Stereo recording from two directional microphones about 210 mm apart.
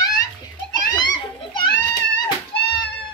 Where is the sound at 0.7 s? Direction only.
20° left (ahead or behind).